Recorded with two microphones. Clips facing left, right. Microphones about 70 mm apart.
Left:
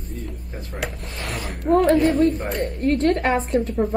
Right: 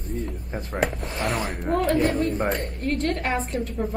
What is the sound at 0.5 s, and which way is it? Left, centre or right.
Speech, right.